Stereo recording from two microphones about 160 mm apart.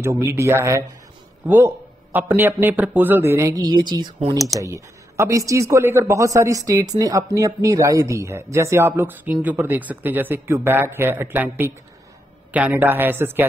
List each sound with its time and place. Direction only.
0.0 s a man's voice: 15° right (ahead or behind)
2.1 s a man's voice: 10° right (ahead or behind)